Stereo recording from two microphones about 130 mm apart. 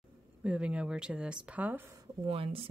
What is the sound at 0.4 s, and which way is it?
Speech, 10° right (ahead or behind).